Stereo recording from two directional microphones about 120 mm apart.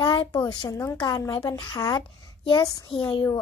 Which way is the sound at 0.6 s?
25° left (ahead or behind).